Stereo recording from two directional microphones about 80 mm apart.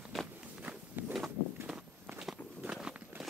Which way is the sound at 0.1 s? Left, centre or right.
Centre.